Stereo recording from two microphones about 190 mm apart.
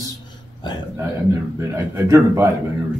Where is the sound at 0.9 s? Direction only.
10° right (ahead or behind).